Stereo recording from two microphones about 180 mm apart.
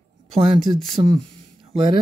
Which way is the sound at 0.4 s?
30° right (ahead or behind).